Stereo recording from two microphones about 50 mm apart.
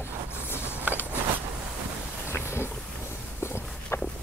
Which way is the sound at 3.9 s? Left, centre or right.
Left.